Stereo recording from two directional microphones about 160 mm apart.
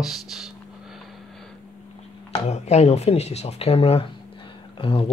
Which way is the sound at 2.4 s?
45° left (ahead or behind).